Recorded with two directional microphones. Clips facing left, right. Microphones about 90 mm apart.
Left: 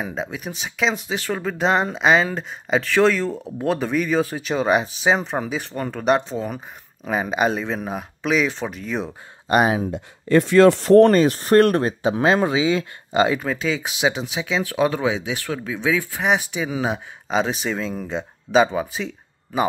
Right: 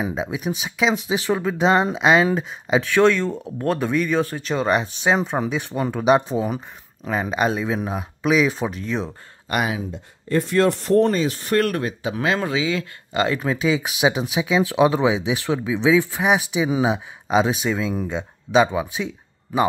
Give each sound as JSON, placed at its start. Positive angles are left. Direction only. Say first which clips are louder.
{"t": 0.0, "sound": "speech", "louder": "right 3 dB", "side_deg": -10}
{"t": 7.1, "sound": "speech", "louder": "left 1 dB", "side_deg": 5}
{"t": 9.5, "sound": "speech", "louder": "left 6 dB", "side_deg": 35}
{"t": 9.8, "sound": "speech", "louder": "left 6 dB", "side_deg": 80}
{"t": 11.2, "sound": "speech", "louder": "left 5 dB", "side_deg": 40}
{"t": 13.4, "sound": "speech", "louder": "right 3 dB", "side_deg": -5}